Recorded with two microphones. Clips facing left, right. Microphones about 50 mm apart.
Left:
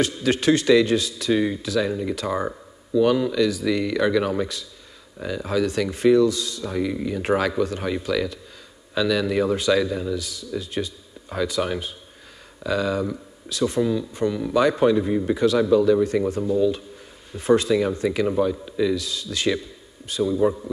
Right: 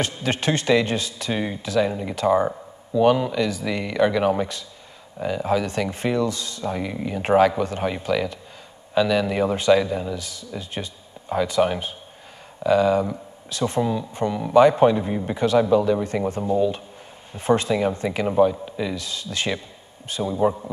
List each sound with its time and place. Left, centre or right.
0.0 s speech: centre